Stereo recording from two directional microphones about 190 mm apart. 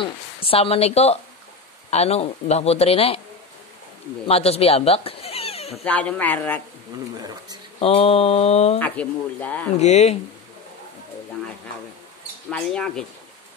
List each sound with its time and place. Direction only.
0.0 s speech: 30° left (ahead or behind)
4.3 s speech: 30° left (ahead or behind)
5.9 s speech: 5° left (ahead or behind)
7.8 s speech: 30° left (ahead or behind)
8.7 s speech: 10° left (ahead or behind)
9.8 s speech: 35° left (ahead or behind)
12.4 s speech: 5° left (ahead or behind)